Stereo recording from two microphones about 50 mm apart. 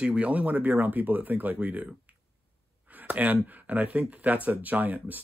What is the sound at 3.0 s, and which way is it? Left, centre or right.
Speech, right.